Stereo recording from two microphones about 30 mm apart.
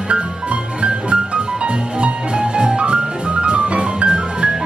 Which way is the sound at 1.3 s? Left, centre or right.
Right.